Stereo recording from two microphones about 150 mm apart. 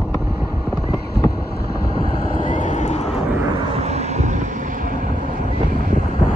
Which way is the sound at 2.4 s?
55° left (ahead or behind).